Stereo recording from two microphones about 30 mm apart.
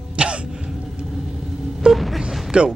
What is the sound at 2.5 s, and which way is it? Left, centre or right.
Speech, right.